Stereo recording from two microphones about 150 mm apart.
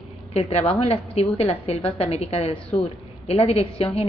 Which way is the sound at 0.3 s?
45° left (ahead or behind).